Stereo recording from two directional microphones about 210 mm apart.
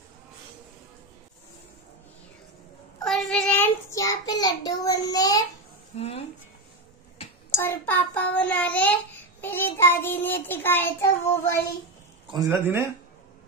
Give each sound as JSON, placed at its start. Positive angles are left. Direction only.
{"t": 3.0, "sound": "child singing", "side_deg": 0}
{"t": 5.9, "sound": "speech", "side_deg": 30}
{"t": 7.5, "sound": "child singing", "side_deg": 10}
{"t": 12.3, "sound": "speech", "side_deg": -15}